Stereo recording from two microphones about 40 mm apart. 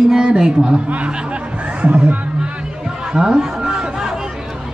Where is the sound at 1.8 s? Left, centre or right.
Right.